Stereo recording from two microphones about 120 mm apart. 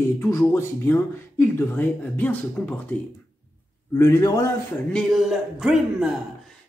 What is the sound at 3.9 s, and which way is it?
Speech, 25° left (ahead or behind).